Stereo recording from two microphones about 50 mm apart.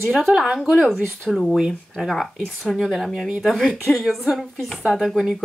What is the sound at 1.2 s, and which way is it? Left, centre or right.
Speech, centre.